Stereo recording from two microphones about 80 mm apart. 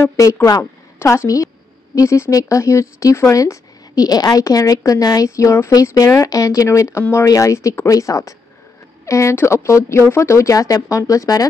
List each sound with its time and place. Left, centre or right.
0.0 s speech: left